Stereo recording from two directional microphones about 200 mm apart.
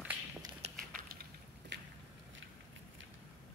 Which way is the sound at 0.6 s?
30° right (ahead or behind).